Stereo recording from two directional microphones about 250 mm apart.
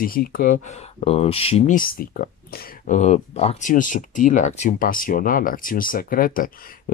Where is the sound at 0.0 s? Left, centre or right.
Left.